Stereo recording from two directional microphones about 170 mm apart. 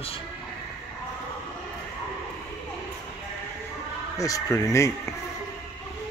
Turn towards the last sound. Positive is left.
turn(degrees=20)  # may be behind; listen again after turning